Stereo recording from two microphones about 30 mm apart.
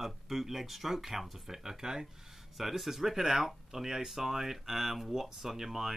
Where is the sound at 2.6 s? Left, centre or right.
Centre.